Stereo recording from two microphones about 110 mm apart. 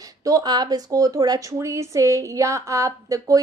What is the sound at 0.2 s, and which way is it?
Speech, 35° right (ahead or behind).